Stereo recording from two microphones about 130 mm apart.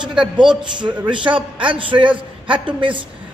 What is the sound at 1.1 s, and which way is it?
A man's voice, 40° right (ahead or behind).